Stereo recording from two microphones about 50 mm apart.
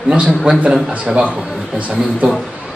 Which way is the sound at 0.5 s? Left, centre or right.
Right.